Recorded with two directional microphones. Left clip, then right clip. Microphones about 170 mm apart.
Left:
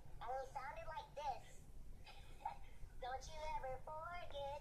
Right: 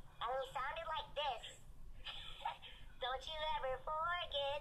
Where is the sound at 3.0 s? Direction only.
40° right (ahead or behind).